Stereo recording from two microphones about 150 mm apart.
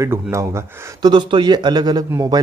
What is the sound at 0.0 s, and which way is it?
Speech, 20° right (ahead or behind).